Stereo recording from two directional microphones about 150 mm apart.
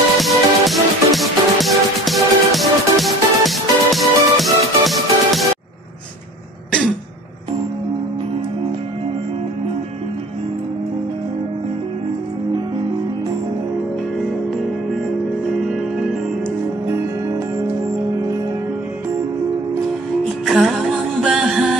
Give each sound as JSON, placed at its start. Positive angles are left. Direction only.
{"t": 0.2, "sound": "music", "side_deg": 0}
{"t": 15.7, "sound": "music", "side_deg": 0}
{"t": 16.8, "sound": "music", "side_deg": -15}
{"t": 20.4, "sound": "music", "side_deg": 0}